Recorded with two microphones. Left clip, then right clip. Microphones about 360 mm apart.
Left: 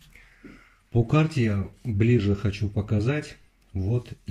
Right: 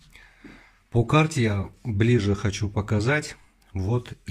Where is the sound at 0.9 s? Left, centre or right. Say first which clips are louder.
Right 3 dB; right.